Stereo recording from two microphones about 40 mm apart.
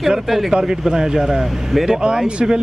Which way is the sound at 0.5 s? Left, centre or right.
Centre.